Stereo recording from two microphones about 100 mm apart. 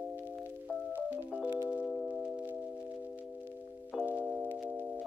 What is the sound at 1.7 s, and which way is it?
Singing bowl, 15° left (ahead or behind).